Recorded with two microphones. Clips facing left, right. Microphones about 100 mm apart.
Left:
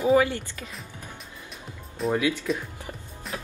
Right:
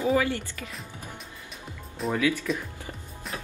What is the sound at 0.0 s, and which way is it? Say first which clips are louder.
Speech: left 4 dB; 25° left (ahead or behind).